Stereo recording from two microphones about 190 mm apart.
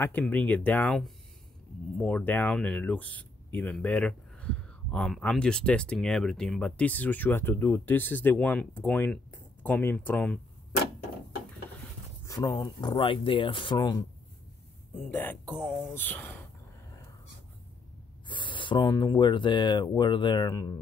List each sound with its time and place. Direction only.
0.0 s speech: 10° left (ahead or behind)
12.3 s speech: 20° left (ahead or behind)
15.0 s speech: 10° left (ahead or behind)
15.5 s speech: 5° right (ahead or behind)
15.9 s speech: 10° left (ahead or behind)
18.3 s a sound: 25° left (ahead or behind)
18.8 s speech: 20° left (ahead or behind)